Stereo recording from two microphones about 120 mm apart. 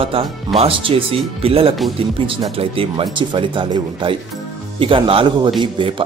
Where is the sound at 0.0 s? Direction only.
50° right (ahead or behind).